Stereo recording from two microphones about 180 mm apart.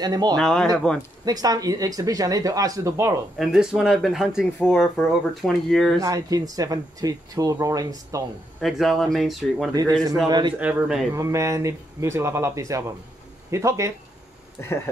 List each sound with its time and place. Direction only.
0.0 s speech: 20° right (ahead or behind)
0.4 s speech: 5° left (ahead or behind)
1.2 s speech: 20° right (ahead or behind)
3.3 s speech: centre (ahead or behind)
5.9 s speech: 20° right (ahead or behind)
8.5 s speech: centre (ahead or behind)
10.2 s speech: 25° right (ahead or behind)
10.6 s speech: 5° right (ahead or behind)
11.1 s speech: 15° right (ahead or behind)
14.6 s speech: 15° left (ahead or behind)